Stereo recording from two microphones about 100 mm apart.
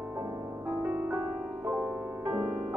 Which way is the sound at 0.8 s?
15° right (ahead or behind).